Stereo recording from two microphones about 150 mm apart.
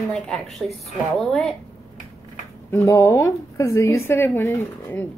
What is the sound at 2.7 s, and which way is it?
A woman's voice, 20° left (ahead or behind).